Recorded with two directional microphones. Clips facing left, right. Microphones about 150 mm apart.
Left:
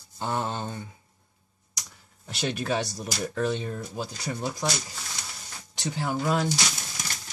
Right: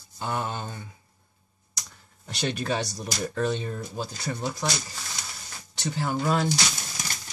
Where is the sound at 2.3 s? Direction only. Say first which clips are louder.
Even; 5° left (ahead or behind).